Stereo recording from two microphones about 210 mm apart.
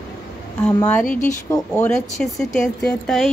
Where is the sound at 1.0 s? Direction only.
40° left (ahead or behind).